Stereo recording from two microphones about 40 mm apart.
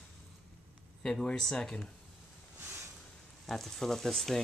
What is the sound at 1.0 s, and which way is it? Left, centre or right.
Speech, centre.